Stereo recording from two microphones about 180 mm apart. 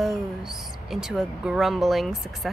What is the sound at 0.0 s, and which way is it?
Speech, centre (ahead or behind).